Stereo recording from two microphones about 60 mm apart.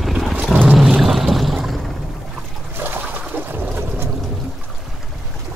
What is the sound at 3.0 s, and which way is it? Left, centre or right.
Trickle, right.